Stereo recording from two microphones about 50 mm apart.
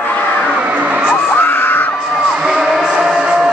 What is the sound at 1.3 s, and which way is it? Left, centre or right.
Screaming, left.